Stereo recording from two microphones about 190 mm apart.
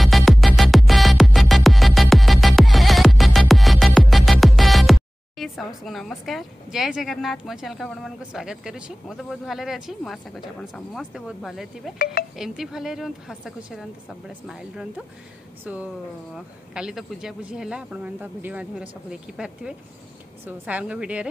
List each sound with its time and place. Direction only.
0.0 s music: centre (ahead or behind)
12.0 s speech: 55° left (ahead or behind)
12.4 s a woman's voice: centre (ahead or behind)